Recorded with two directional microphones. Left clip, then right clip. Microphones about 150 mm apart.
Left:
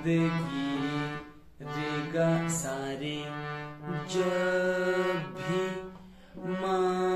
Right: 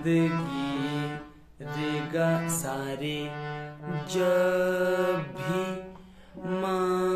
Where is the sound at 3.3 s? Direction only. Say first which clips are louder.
Right 1 dB; 25° right (ahead or behind).